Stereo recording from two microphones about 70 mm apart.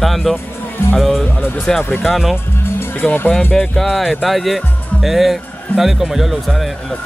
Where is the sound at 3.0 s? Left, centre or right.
Left.